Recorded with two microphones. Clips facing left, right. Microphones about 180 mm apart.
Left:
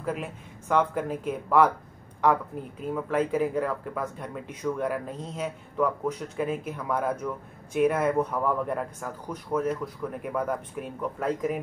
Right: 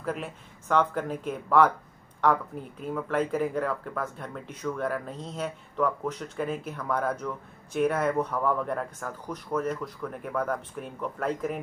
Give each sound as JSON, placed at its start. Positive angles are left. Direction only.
{"t": 0.0, "sound": "speech", "side_deg": 5}
{"t": 2.8, "sound": "speech", "side_deg": 5}